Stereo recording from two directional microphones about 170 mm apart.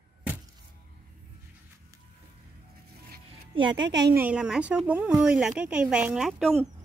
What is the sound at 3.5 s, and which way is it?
Speech, 25° right (ahead or behind).